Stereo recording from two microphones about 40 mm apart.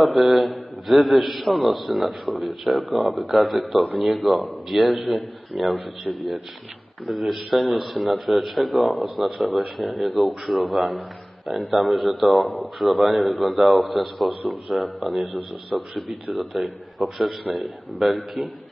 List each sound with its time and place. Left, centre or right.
0.0 s a man's voice: centre
6.0 s speech: right
7.1 s a man's voice: centre